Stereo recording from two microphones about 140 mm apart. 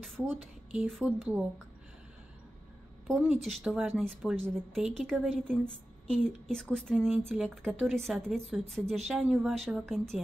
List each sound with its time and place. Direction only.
0.2 s a sound: 10° right (ahead or behind)
0.8 s speech: centre (ahead or behind)
3.2 s speech: 5° right (ahead or behind)